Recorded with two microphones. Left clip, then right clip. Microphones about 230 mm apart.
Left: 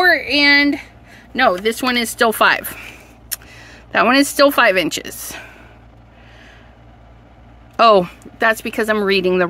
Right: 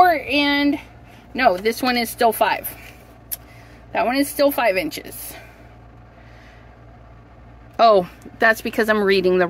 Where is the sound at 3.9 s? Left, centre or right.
Left.